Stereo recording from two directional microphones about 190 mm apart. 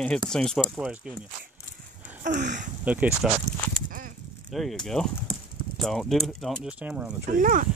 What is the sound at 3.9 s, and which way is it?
Livestock, 45° right (ahead or behind).